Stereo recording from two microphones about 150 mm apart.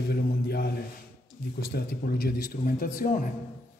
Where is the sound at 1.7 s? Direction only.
90° left; by 3.2 s 70° left (ahead or behind).